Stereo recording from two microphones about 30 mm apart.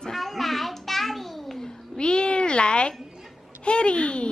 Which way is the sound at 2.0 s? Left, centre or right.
Left.